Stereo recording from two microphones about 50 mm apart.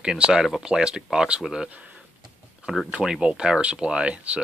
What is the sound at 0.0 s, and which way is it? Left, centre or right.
Speech, centre.